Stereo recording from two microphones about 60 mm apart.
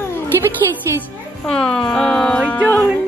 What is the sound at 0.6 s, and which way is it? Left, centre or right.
Speech, right.